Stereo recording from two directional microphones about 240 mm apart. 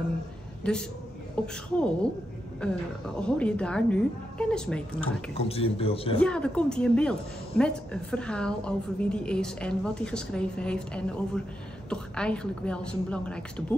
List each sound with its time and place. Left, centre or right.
0.6 s a woman's voice: centre
5.4 s speech: left
6.1 s a woman's voice: centre